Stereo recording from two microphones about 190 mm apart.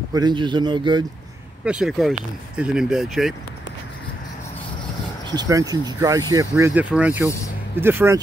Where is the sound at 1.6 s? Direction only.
5° right (ahead or behind).